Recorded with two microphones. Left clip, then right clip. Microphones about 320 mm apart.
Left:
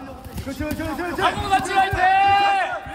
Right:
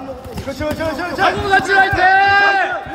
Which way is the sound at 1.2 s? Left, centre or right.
Left.